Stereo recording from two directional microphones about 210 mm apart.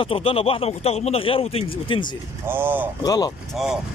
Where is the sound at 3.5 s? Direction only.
Centre (ahead or behind).